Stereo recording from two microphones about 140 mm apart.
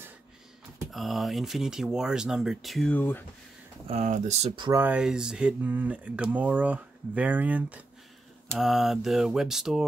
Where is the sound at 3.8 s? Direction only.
55° right (ahead or behind).